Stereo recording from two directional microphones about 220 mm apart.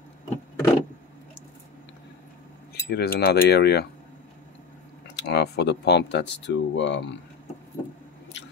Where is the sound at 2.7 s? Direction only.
45° left (ahead or behind).